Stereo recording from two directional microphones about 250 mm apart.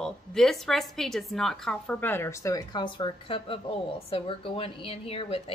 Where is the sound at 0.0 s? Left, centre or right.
Centre.